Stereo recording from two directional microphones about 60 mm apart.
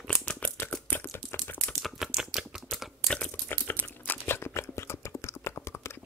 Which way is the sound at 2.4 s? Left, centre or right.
Centre.